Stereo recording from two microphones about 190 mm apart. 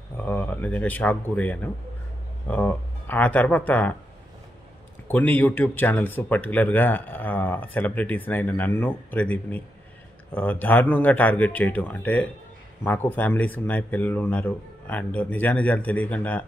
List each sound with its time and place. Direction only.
0.2 s speech: 10° left (ahead or behind)
5.1 s speech: 10° left (ahead or behind)